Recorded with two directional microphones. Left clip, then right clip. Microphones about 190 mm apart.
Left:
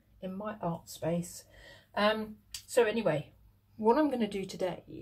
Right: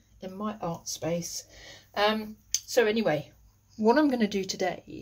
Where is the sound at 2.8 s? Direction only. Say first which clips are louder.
Right 3 dB; 45° right (ahead or behind).